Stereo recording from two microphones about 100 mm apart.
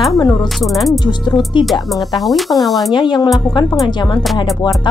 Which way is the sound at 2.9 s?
50° left (ahead or behind).